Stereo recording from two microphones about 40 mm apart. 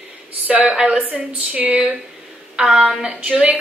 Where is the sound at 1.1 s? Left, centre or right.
Right.